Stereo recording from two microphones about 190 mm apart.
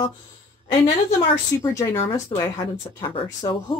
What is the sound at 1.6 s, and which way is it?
Speech, 15° left (ahead or behind).